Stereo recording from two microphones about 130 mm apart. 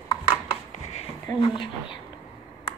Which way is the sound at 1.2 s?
40° left (ahead or behind).